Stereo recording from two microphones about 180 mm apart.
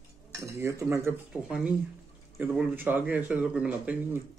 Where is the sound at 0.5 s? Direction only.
15° right (ahead or behind).